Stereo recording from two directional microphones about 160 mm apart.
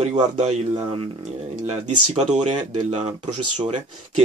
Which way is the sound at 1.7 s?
45° right (ahead or behind).